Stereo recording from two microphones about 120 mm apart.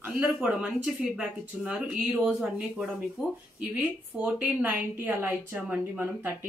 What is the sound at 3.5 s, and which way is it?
A woman's voice, 15° right (ahead or behind).